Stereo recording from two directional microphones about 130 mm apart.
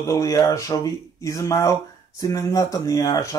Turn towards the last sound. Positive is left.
turn(degrees=25)  # may be behind; listen again after turning